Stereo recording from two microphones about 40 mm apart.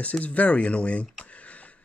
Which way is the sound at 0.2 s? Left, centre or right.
Left.